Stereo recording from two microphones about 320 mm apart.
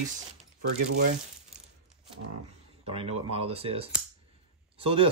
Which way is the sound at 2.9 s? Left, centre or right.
Centre.